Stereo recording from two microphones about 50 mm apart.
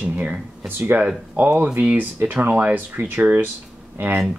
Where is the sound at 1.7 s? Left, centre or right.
Right.